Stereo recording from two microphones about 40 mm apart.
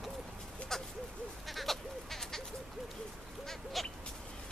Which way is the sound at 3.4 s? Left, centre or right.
Centre.